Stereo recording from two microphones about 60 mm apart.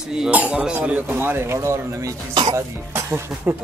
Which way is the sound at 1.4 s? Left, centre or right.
Right.